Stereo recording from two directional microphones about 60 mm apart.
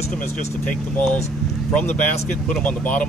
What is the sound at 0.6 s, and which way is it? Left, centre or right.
Speech, left.